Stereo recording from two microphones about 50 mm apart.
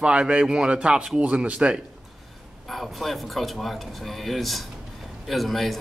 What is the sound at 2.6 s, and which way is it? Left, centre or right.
A man's voice, centre.